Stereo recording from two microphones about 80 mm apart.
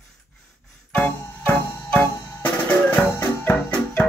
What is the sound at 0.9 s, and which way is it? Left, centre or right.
Music, centre.